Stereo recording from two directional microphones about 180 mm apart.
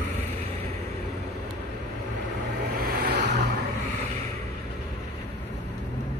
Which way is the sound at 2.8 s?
60° right (ahead or behind).